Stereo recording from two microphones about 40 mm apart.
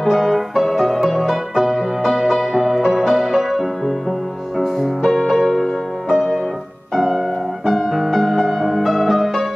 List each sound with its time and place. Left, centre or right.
0.1 s music: centre
5.1 s music: centre
6.0 s music: centre